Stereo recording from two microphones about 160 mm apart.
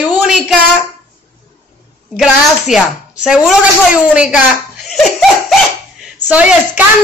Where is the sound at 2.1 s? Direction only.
Centre (ahead or behind).